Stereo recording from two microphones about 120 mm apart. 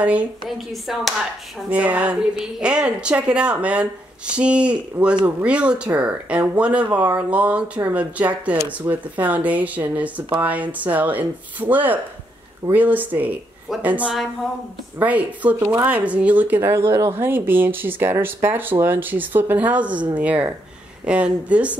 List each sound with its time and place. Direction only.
0.0 s speech: 10° right (ahead or behind)
0.6 s speech: centre (ahead or behind)